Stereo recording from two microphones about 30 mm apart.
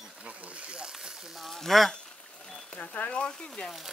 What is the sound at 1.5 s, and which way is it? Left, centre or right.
Speech, centre.